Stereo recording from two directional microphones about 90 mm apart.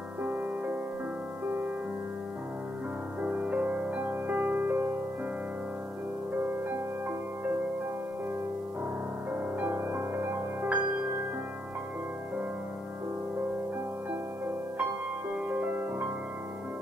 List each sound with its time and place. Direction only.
0.2 s music: 15° right (ahead or behind)
3.2 s music: 15° right (ahead or behind)
9.6 s music: 20° right (ahead or behind)
15.4 s music: 20° right (ahead or behind)